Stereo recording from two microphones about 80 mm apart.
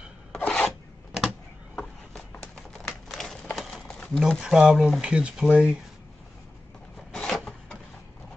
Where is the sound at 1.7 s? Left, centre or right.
Centre.